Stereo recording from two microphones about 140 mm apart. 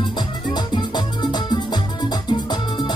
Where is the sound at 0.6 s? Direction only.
30° left (ahead or behind).